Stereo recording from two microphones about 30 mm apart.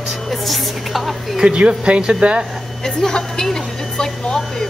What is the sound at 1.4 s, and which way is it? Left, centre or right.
Speech, right.